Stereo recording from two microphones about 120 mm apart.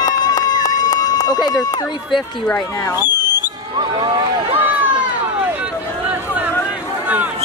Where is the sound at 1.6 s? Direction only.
30° left (ahead or behind).